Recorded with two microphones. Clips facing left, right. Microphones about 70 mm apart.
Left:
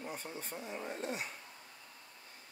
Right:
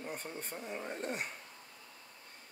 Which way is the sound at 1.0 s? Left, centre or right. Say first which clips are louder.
Right 1 dB; right.